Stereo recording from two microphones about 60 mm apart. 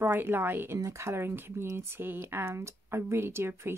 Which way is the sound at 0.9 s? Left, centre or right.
Right.